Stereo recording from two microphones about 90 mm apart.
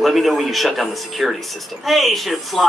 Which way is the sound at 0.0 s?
Centre (ahead or behind).